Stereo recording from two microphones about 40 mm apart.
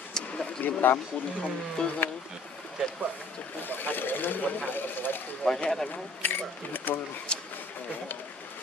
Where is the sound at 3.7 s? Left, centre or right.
Left.